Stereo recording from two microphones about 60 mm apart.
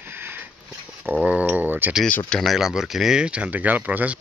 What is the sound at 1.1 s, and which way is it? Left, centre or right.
Speech, right.